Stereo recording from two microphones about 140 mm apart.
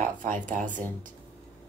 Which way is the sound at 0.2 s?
65° right (ahead or behind).